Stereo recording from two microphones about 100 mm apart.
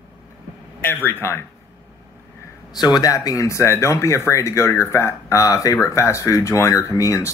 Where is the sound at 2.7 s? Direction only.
45° left (ahead or behind).